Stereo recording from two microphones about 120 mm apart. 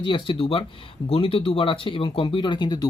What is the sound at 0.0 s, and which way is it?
Speech, 45° left (ahead or behind).